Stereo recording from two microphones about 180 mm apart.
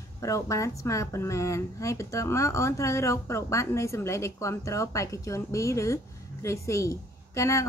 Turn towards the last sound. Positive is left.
turn(degrees=15)  # may be behind; listen again after turning